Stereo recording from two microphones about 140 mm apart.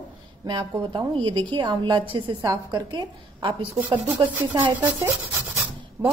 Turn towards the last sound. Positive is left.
turn(degrees=-15)  # may be behind; listen again after turning